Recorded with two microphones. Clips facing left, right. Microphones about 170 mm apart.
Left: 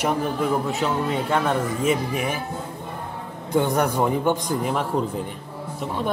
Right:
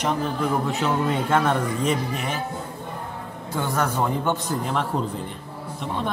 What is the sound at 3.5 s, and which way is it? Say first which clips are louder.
A woman's voice: left 4 dB; 15° left (ahead or behind).